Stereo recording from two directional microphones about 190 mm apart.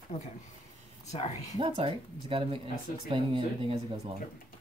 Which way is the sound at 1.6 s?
30° right (ahead or behind).